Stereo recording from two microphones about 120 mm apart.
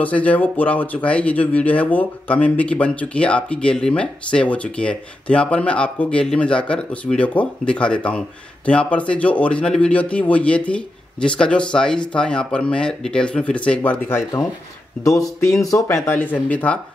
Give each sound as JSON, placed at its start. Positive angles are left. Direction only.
{"t": 0.0, "sound": "speech", "side_deg": 10}